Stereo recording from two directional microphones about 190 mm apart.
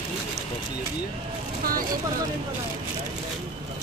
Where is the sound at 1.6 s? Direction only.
50° right (ahead or behind).